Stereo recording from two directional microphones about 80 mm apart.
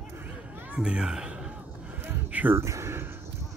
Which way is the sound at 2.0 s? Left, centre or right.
Right.